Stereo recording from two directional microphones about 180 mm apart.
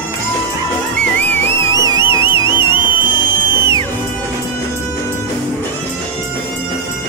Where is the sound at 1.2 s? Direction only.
10° left (ahead or behind); by 2.7 s 25° left (ahead or behind).